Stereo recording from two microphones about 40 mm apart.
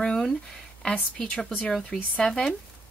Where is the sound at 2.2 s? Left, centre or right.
Left.